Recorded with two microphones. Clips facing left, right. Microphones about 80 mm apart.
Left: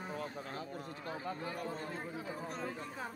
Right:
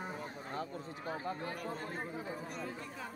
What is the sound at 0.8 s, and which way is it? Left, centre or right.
Speech, right.